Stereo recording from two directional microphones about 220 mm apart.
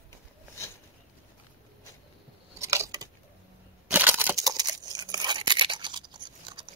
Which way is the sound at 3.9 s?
10° right (ahead or behind).